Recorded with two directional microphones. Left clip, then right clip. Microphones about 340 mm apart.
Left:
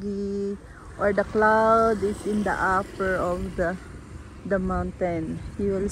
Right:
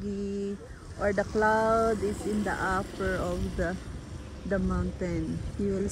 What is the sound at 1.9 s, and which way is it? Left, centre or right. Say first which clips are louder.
Speech: left 4 dB; right.